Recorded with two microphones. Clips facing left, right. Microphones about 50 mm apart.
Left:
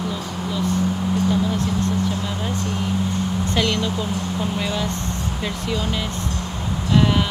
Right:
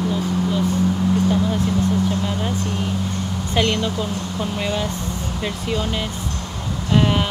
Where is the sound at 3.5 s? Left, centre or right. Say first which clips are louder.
Right 3 dB; centre.